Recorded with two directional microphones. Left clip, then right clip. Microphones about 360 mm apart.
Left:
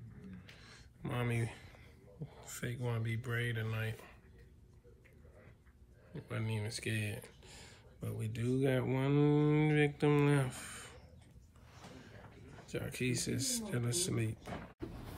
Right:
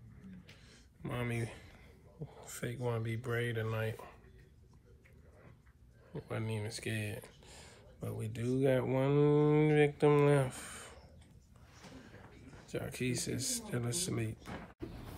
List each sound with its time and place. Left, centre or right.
0.7 s a sound: centre
2.2 s speech: centre
6.1 s speech: centre
12.6 s speech: centre
14.8 s door: centre